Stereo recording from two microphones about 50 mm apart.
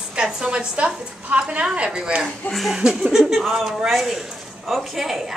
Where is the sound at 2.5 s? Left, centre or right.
Centre.